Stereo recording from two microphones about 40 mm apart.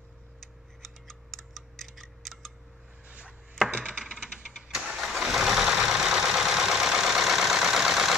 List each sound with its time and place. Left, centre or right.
0.8 s tick-tock: centre
3.1 s chopping: right
3.7 s a sound: right
4.5 s engine starting: centre
4.9 s vehicle: centre